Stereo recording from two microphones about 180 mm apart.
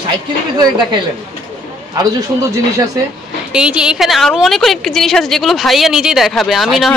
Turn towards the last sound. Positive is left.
turn(degrees=0)  # may be behind; listen again after turning